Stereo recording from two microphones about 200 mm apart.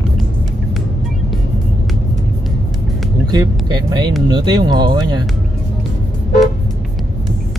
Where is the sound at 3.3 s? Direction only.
20° right (ahead or behind).